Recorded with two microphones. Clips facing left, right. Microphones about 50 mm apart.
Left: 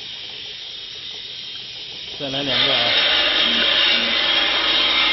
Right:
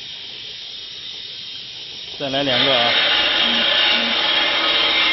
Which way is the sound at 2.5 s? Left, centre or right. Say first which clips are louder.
Right 1 dB; centre.